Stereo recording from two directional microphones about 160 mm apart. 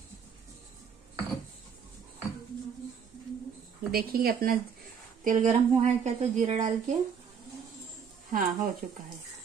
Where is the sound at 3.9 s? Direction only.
70° right (ahead or behind).